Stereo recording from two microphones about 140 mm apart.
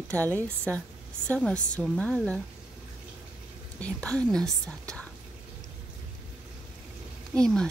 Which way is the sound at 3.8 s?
10° left (ahead or behind).